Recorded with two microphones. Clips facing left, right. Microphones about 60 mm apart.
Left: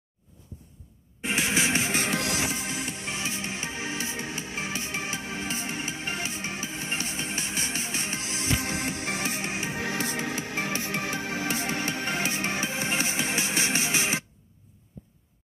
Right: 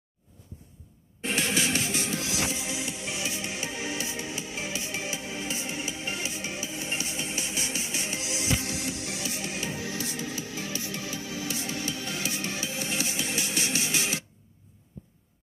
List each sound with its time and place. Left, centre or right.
1.2 s music: centre
1.9 s music: left
2.3 s music: left
9.8 s music: left